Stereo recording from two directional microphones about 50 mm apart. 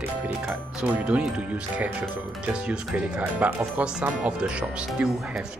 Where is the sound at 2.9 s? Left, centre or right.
Right.